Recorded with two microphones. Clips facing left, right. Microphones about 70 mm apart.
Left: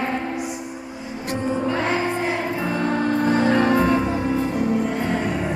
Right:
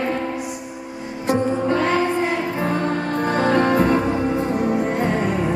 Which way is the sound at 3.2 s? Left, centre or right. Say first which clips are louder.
Right 2 dB; right.